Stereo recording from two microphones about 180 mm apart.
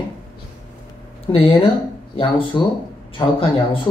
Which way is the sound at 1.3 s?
25° left (ahead or behind).